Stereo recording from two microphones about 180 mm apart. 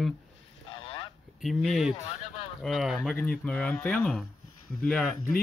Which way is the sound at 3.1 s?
10° left (ahead or behind).